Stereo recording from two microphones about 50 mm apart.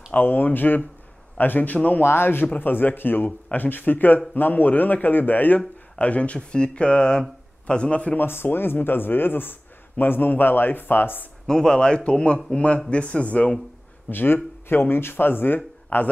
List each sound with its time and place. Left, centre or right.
0.2 s speech: left
2.0 s speech: left
8.2 s speech: left
11.4 s speech: centre
14.1 s speech: left